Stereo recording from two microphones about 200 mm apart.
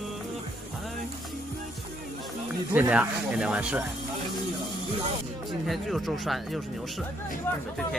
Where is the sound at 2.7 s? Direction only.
10° right (ahead or behind).